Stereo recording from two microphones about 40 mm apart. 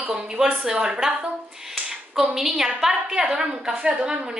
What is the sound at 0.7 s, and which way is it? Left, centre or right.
Speech, right.